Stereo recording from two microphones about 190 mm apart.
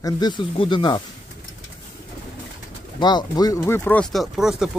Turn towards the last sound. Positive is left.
turn(degrees=-5)  # may be behind; listen again after turning